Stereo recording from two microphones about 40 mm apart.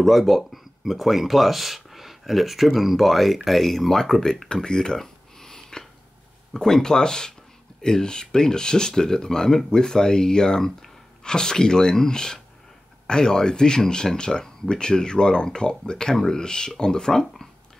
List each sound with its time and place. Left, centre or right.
0.0 s speech: centre
4.5 s a sound: centre
6.5 s speech: centre